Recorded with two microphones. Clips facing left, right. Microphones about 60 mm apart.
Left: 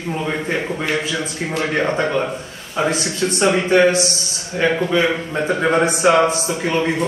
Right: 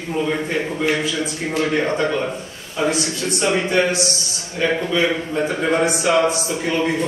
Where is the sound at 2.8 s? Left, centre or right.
Left.